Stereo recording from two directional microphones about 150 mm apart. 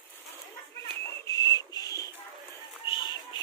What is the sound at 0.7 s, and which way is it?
Whistling, 20° left (ahead or behind).